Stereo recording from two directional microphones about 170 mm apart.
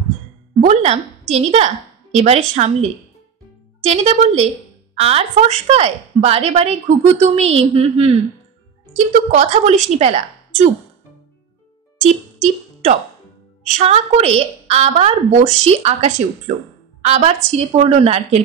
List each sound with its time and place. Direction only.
0.7 s a woman's voice: 40° right (ahead or behind)
12.0 s a sound: 40° right (ahead or behind)
13.7 s a woman's voice: 40° right (ahead or behind)